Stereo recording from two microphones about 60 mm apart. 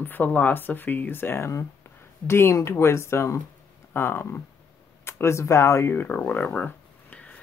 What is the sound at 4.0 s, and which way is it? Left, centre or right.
Speech, left.